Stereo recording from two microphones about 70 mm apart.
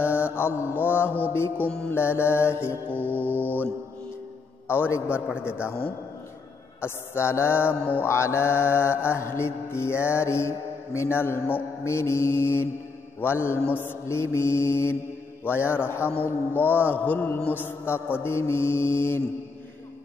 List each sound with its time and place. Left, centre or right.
0.0 s mantra: left
2.9 s mantra: left
4.6 s mantra: left
5.3 s a man's voice: centre
6.8 s mantra: left